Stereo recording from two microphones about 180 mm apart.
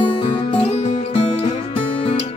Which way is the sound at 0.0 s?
30° left (ahead or behind).